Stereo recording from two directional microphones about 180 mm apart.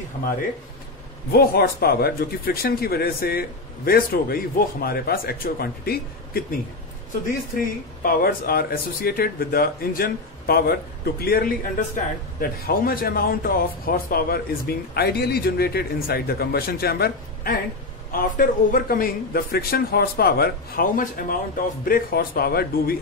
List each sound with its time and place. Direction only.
1.3 s a man's voice: 60° left (ahead or behind)